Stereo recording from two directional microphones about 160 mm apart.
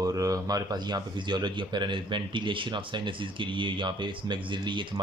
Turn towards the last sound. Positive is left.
turn(degrees=-30)  # may be behind; listen again after turning